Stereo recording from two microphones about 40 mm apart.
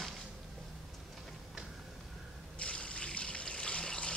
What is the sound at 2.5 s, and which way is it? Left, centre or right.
Trickle, left.